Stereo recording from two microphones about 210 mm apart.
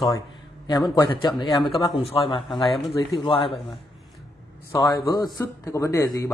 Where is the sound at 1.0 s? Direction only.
20° left (ahead or behind).